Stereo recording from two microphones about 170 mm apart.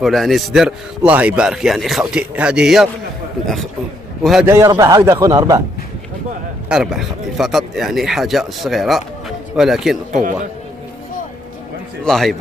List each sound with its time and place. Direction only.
0.0 s a man's voice: centre (ahead or behind)
4.2 s a man's voice: centre (ahead or behind)
4.5 s a man's voice: 15° right (ahead or behind)
6.7 s a man's voice: 5° right (ahead or behind)
12.0 s a man's voice: centre (ahead or behind)